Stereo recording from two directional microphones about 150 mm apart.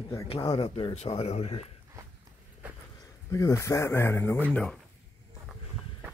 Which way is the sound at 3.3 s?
20° left (ahead or behind).